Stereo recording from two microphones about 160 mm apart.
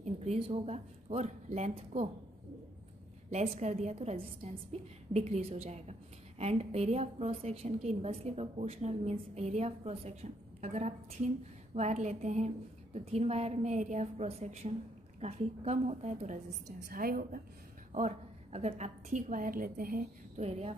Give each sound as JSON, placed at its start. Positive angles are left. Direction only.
{"t": 0.0, "sound": "a woman's voice", "side_deg": -45}
{"t": 3.3, "sound": "a woman's voice", "side_deg": -45}
{"t": 16.9, "sound": "a woman's voice", "side_deg": -65}
{"t": 17.9, "sound": "a woman's voice", "side_deg": -45}
{"t": 20.4, "sound": "a woman's voice", "side_deg": -40}